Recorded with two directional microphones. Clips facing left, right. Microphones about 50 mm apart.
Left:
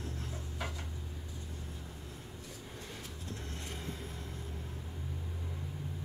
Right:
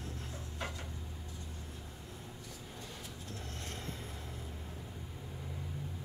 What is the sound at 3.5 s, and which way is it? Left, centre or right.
Vehicle, centre.